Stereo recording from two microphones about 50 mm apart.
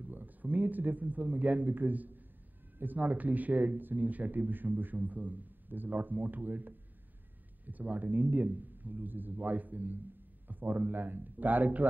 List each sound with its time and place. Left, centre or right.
0.0 s speech: right